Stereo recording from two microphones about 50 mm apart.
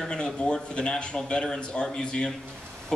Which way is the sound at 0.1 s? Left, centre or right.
Centre.